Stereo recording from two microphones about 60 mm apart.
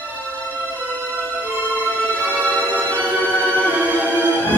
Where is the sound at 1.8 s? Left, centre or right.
Right.